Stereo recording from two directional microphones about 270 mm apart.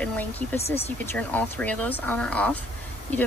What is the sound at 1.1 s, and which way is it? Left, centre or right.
Speech, centre.